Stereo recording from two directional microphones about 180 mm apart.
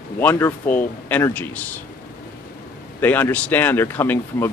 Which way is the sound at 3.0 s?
10° left (ahead or behind).